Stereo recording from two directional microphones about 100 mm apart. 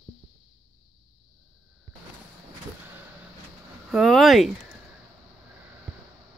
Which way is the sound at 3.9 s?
Centre (ahead or behind).